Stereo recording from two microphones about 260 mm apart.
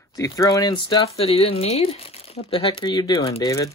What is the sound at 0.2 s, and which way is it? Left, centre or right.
Speech, centre.